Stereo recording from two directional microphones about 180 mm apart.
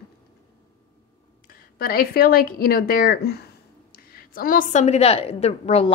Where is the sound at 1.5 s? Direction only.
55° left (ahead or behind); by 5.9 s 35° left (ahead or behind).